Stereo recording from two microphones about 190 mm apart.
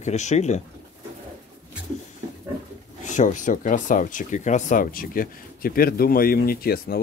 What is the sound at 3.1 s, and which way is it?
Speech, 40° left (ahead or behind).